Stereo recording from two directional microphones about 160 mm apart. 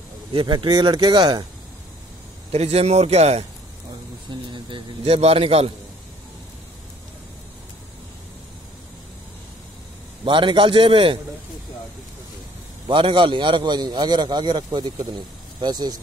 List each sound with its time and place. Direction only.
0.3 s a man's voice: 30° right (ahead or behind)
2.5 s a man's voice: 40° right (ahead or behind)
4.3 s a man's voice: 30° right (ahead or behind)
10.2 s a man's voice: 30° right (ahead or behind)
12.8 s a man's voice: 30° right (ahead or behind)